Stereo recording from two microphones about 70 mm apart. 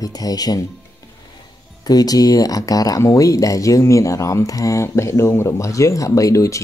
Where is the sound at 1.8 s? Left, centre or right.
Left.